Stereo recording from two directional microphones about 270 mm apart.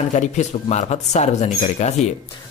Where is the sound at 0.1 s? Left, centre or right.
Left.